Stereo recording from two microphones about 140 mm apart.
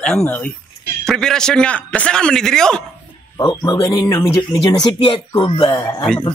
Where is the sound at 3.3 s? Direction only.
30° left (ahead or behind).